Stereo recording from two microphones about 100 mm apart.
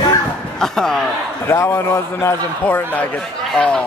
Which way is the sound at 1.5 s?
25° left (ahead or behind).